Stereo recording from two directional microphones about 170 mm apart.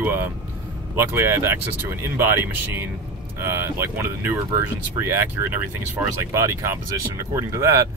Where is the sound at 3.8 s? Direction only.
15° right (ahead or behind).